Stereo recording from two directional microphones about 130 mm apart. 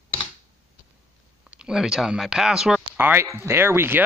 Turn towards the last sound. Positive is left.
turn(degrees=-15)  # may be behind; listen again after turning